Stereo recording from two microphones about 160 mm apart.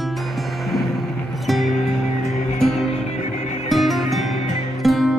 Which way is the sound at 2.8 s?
40° left (ahead or behind).